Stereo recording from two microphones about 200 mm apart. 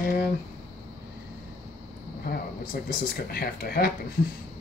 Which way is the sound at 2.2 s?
50° left (ahead or behind).